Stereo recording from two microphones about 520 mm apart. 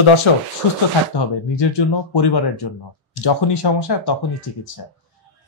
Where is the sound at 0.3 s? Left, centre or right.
Left.